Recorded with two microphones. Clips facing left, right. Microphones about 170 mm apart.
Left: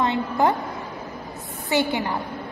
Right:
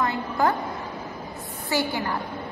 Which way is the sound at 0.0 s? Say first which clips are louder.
Left 3 dB; 25° left (ahead or behind).